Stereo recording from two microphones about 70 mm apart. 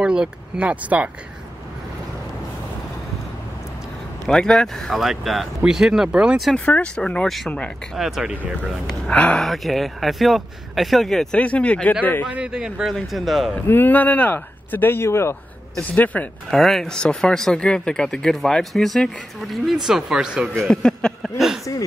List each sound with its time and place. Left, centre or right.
0.0 s speech: centre
4.3 s speech: centre
6.5 s speech: centre
8.0 s speech: centre
9.1 s speech: centre
9.4 s speech: centre
11.3 s speech: centre
12.3 s speech: centre
13.1 s speech: centre
13.7 s speech: left
15.9 s speech: left
16.4 s speech: centre
20.5 s speech: centre
21.2 s a sound: centre